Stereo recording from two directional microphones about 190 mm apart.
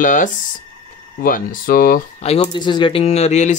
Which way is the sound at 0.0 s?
45° left (ahead or behind).